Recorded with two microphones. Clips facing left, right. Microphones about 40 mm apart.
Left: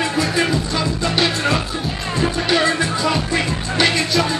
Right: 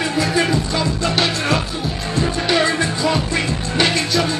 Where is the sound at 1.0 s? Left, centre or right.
Centre.